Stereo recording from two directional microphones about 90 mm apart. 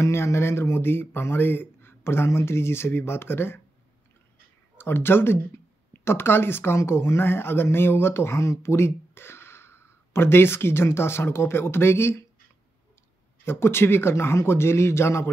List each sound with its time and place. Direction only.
0.0 s speech: 30° left (ahead or behind)
4.7 s speech: 25° left (ahead or behind)
13.5 s speech: 25° left (ahead or behind)